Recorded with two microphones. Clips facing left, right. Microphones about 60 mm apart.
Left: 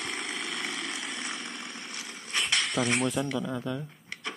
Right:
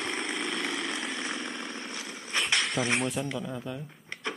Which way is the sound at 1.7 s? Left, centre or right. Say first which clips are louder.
Right 3 dB; right.